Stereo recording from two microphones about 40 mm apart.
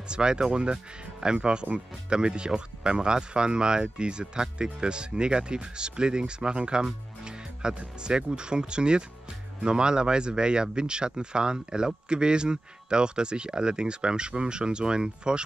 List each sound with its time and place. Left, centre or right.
0.1 s speech: right